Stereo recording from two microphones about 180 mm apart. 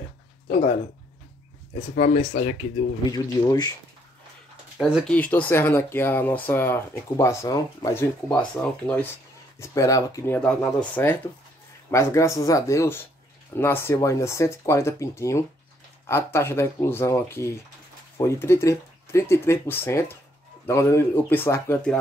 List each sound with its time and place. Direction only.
2.0 s speech: 45° left (ahead or behind)
3.1 s speech: 20° left (ahead or behind)
4.8 s speech: 5° right (ahead or behind)
5.1 s speech: 10° left (ahead or behind)